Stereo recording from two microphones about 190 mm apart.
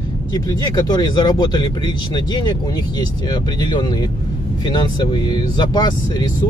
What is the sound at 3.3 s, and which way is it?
Speech, 25° left (ahead or behind).